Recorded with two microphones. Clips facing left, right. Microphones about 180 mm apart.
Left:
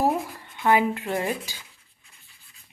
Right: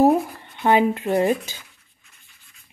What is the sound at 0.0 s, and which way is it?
Speech, 25° right (ahead or behind).